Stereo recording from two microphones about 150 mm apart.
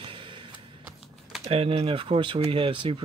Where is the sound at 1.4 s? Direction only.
45° right (ahead or behind).